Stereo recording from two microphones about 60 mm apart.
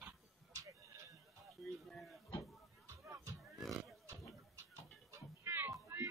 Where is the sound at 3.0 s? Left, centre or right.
Right.